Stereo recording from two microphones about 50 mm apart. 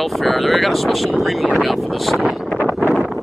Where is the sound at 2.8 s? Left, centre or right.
Centre.